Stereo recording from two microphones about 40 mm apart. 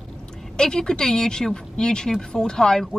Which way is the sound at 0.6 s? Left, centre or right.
Centre.